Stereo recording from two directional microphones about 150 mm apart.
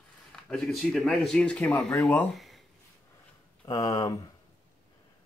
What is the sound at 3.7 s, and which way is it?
Speech, 20° left (ahead or behind).